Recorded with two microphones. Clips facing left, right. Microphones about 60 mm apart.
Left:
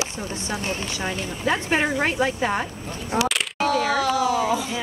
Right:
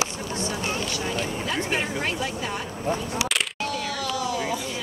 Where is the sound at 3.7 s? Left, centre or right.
Left.